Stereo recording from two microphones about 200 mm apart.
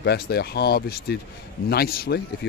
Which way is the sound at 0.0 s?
55° left (ahead or behind).